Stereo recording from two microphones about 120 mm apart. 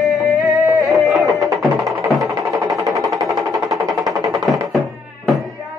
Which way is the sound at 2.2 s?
30° right (ahead or behind).